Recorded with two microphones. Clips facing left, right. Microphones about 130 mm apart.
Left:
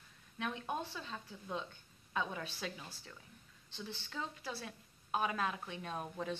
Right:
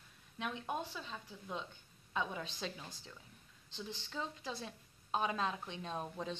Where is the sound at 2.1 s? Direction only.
20° right (ahead or behind).